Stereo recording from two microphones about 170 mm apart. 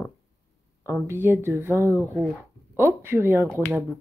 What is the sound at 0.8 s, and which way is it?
Speech, 15° right (ahead or behind).